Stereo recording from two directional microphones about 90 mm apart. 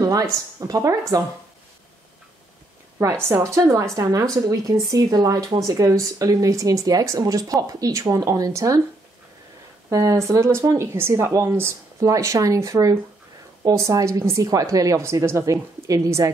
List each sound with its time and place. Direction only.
0.0 s a woman's voice: 40° right (ahead or behind)
3.3 s a woman's voice: 30° right (ahead or behind)
9.8 s a woman's voice: 40° right (ahead or behind)